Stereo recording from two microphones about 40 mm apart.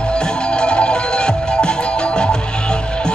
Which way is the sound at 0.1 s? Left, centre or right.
Left.